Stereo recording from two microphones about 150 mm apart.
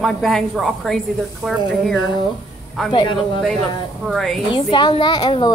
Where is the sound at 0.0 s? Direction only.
Centre (ahead or behind).